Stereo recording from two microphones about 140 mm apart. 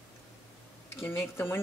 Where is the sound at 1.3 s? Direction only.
15° left (ahead or behind).